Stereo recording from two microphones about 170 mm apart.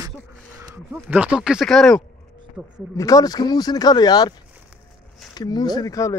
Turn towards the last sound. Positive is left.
turn(degrees=20)  # may be behind; listen again after turning